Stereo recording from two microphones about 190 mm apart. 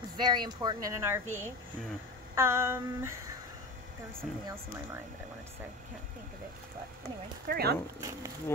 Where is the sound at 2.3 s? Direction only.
15° right (ahead or behind).